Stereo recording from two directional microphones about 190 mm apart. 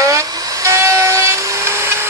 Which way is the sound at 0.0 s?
15° right (ahead or behind).